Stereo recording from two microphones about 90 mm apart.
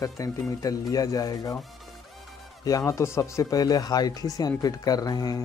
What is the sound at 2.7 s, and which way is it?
Speech, 35° left (ahead or behind).